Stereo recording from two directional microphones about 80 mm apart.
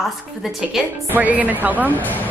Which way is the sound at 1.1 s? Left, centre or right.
Right.